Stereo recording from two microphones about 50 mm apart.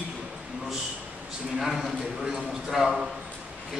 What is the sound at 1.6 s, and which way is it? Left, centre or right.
A man's voice, centre.